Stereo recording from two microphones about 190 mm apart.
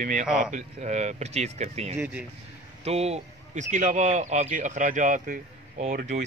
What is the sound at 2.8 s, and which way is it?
Speech, 35° right (ahead or behind).